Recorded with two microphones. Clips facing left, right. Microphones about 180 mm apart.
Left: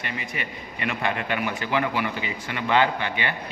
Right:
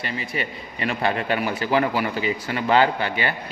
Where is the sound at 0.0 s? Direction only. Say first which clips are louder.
Right 4 dB; 35° right (ahead or behind).